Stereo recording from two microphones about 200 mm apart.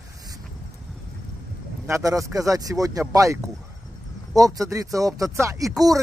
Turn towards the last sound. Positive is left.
turn(degrees=-15)  # may be behind; listen again after turning